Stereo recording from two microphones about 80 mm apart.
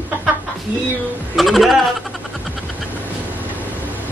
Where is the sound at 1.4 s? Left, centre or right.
Centre.